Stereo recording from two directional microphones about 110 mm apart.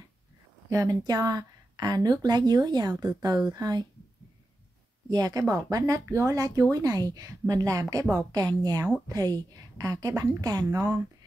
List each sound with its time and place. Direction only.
0.7 s a woman's voice: 30° right (ahead or behind)
5.1 s a woman's voice: 35° right (ahead or behind)